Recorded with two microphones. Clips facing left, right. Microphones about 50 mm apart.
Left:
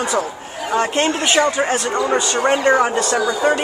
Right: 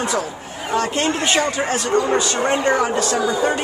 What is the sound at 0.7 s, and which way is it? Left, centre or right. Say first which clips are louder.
Speech: left 2 dB; left.